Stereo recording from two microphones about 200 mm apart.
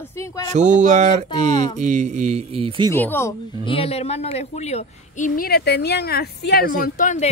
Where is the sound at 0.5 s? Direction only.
35° right (ahead or behind).